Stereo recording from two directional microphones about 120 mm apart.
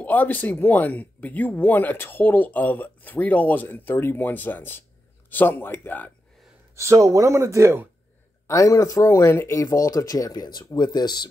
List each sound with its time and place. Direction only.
0.0 s speech: 15° left (ahead or behind)
6.7 s speech: 25° right (ahead or behind)
8.5 s speech: 25° left (ahead or behind)